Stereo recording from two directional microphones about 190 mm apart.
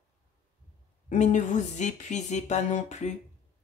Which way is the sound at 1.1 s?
40° left (ahead or behind).